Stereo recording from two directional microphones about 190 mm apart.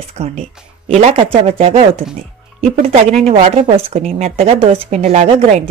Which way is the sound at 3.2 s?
40° right (ahead or behind).